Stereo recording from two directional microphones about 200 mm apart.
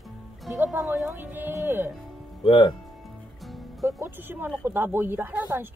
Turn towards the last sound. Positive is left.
turn(degrees=-10)  # may be behind; listen again after turning